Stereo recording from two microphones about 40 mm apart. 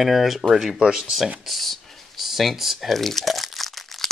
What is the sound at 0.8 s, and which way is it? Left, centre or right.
Speech, centre.